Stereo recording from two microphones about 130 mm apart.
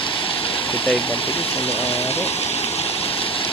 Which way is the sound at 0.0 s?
40° left (ahead or behind).